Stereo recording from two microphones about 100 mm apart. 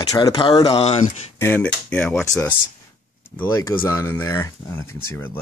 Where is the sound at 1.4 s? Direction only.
20° left (ahead or behind).